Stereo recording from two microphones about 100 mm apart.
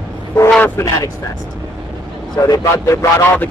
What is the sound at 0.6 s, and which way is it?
Speech, 20° left (ahead or behind).